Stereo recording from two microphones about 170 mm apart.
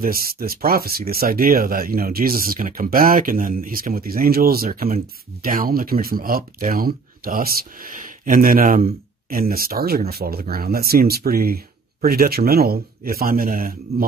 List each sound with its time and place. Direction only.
0.0 s speech: 60° right (ahead or behind)